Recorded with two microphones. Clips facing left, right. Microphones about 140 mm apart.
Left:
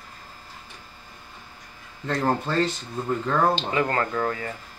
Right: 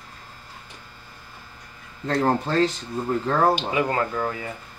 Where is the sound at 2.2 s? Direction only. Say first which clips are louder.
Right 2 dB; 15° right (ahead or behind).